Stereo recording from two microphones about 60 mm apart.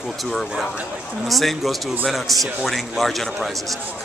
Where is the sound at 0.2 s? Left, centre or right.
Centre.